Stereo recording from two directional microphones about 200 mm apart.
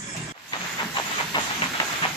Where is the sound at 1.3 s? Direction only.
20° left (ahead or behind).